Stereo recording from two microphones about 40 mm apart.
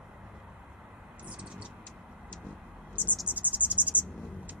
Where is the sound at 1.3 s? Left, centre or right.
Right.